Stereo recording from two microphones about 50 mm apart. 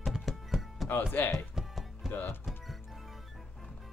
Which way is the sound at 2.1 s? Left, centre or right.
Left.